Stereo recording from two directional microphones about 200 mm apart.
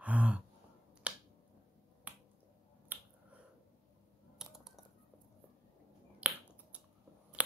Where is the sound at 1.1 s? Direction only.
5° right (ahead or behind).